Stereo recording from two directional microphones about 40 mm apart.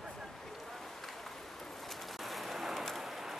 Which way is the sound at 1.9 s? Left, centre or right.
Centre.